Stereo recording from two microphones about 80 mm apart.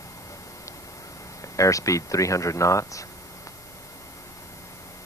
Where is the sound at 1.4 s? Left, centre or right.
Left.